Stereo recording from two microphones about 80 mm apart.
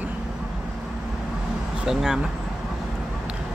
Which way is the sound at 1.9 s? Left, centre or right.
Centre.